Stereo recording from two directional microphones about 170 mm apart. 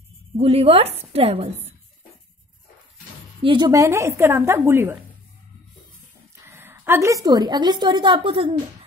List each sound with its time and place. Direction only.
0.4 s a woman's voice: 35° right (ahead or behind)
3.4 s a woman's voice: 25° right (ahead or behind)
6.4 s a woman's voice: 15° right (ahead or behind); by 8.5 s 30° right (ahead or behind)